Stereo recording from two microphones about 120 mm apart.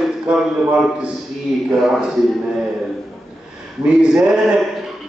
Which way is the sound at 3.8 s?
5° right (ahead or behind).